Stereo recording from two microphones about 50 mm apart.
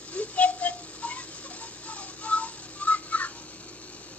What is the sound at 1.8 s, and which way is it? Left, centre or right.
Music, left.